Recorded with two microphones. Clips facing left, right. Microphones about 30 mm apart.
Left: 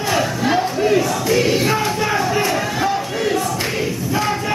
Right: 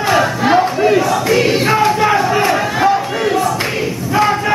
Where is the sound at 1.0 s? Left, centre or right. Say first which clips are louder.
Right 4 dB; right.